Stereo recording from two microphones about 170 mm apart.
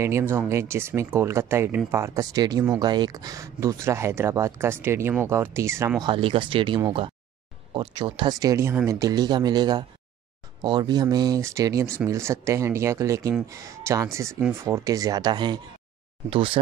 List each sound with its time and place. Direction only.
0.0 s speech: 15° right (ahead or behind)
6.0 s speech: 30° right (ahead or behind)